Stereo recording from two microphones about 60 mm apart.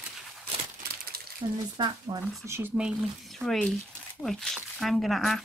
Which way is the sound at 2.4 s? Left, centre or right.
Right.